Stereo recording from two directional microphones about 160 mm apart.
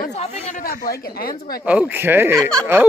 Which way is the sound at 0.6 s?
70° left (ahead or behind).